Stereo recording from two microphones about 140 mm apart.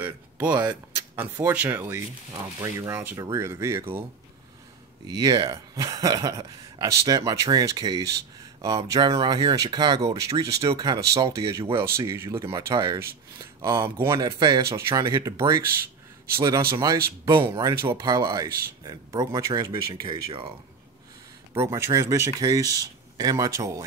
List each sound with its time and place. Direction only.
0.0 s a sound: 10° right (ahead or behind)
0.9 s speech: 15° right (ahead or behind)
5.0 s speech: 25° right (ahead or behind)
21.5 s speech: 20° right (ahead or behind)